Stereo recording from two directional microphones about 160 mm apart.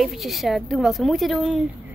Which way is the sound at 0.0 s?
Centre (ahead or behind).